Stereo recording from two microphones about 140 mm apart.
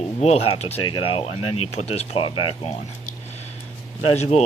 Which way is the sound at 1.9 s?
45° left (ahead or behind).